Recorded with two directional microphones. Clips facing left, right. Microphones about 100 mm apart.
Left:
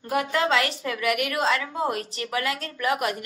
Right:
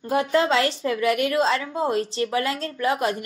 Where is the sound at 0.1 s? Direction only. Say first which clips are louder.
Right 3 dB; 30° right (ahead or behind).